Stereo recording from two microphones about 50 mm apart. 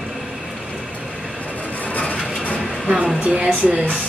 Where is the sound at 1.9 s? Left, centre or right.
Left.